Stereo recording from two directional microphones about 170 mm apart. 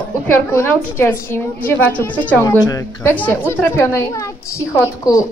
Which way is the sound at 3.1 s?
10° left (ahead or behind).